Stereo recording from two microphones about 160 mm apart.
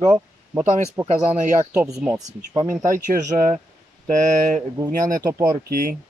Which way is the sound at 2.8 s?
55° right (ahead or behind).